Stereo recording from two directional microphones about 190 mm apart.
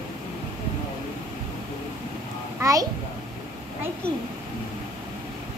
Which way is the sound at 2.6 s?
15° right (ahead or behind).